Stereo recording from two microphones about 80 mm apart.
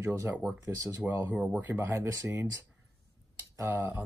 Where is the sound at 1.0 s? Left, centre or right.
Centre.